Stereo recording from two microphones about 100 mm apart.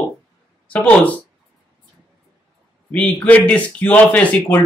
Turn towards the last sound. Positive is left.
turn(degrees=15)  # may be behind; listen again after turning